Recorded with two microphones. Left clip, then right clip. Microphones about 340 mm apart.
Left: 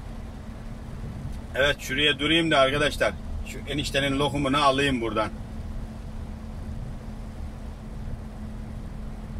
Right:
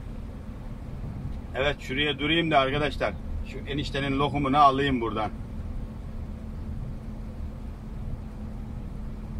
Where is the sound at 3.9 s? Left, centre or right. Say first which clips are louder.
Left 3 dB; left.